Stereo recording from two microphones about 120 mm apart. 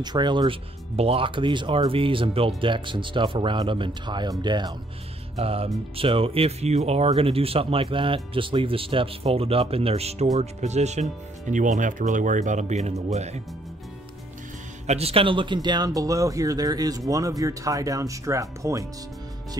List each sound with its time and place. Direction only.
0.0 s speech: 35° right (ahead or behind)
0.9 s speech: 55° right (ahead or behind); by 4.7 s 35° right (ahead or behind)
5.3 s speech: 55° right (ahead or behind); by 11.1 s 70° right (ahead or behind)
11.5 s speech: 90° right; by 13.4 s 65° right (ahead or behind)
14.9 s speech: 55° right (ahead or behind); by 18.9 s 25° right (ahead or behind)